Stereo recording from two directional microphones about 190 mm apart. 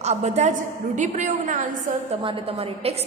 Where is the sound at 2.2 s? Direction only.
30° right (ahead or behind).